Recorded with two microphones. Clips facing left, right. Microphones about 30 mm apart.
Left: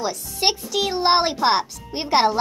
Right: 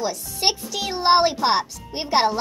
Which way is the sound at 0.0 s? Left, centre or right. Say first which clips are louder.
Left 1 dB; centre.